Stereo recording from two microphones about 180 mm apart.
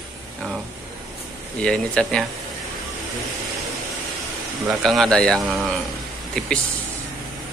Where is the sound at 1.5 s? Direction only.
5° left (ahead or behind).